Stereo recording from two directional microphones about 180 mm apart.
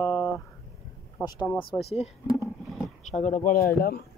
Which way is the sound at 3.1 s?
40° left (ahead or behind).